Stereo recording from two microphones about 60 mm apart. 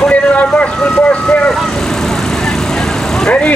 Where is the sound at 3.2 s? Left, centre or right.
Centre.